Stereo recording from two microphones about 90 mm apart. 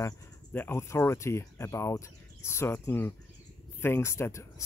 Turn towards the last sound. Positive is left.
turn(degrees=30)  # may be behind; listen again after turning